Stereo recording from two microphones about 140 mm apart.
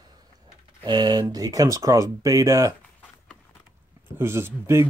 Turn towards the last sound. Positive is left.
turn(degrees=-20)  # may be behind; listen again after turning